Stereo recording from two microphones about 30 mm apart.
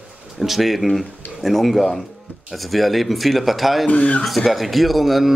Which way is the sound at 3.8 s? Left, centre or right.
Left.